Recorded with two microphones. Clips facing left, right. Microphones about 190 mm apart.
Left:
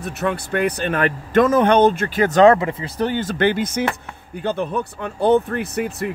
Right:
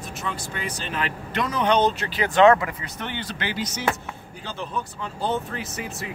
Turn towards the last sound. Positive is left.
turn(degrees=60)  # may be behind; listen again after turning